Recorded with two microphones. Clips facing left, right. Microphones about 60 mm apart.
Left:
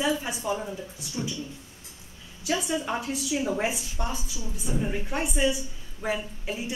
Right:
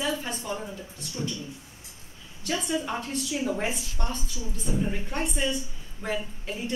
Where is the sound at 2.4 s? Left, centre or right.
Centre.